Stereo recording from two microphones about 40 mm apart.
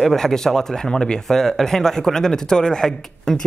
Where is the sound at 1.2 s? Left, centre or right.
Centre.